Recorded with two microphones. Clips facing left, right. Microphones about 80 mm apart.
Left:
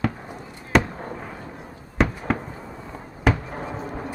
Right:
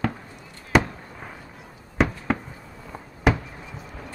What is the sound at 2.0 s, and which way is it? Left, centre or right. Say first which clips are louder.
Fireworks: even; centre.